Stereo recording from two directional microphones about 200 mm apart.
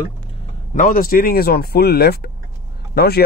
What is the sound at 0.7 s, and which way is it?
Speech, 40° left (ahead or behind).